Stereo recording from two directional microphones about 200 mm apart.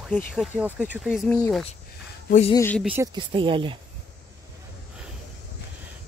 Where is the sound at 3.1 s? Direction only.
25° right (ahead or behind).